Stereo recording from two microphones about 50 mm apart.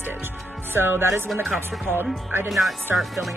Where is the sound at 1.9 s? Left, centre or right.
Right.